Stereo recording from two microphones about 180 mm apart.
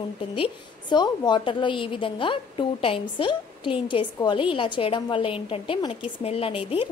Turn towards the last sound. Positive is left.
turn(degrees=30)  # may be behind; listen again after turning